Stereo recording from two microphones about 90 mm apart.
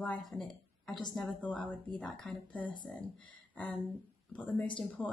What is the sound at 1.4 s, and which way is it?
Speech, 15° left (ahead or behind).